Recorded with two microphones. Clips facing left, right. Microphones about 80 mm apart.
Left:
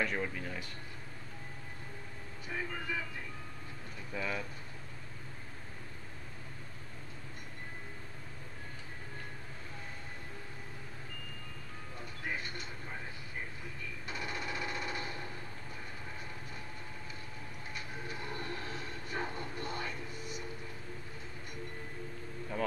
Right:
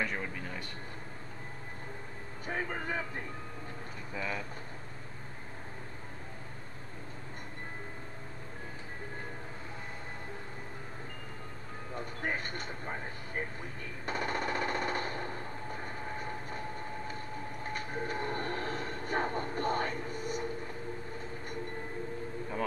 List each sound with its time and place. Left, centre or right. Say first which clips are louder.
0.0 s speech: left 1 dB; centre
2.4 s speech: right 4 dB; right
4.1 s speech: even; centre
11.9 s speech: right 5 dB; right
14.0 s machine gun: right 7 dB; right
17.6 s train: right 7 dB; right